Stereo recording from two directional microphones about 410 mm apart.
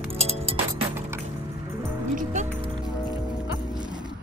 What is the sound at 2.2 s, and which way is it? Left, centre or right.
Music, centre.